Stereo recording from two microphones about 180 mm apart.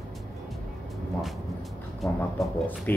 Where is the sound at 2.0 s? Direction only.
5° left (ahead or behind).